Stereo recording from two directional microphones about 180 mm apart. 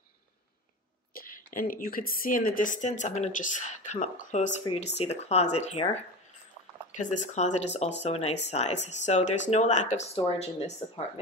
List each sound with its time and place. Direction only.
1.1 s a woman's voice: 50° left (ahead or behind)
6.9 s speech: 45° left (ahead or behind)